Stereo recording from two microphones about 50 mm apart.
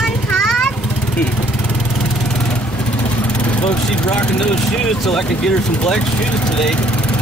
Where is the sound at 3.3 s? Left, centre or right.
Left.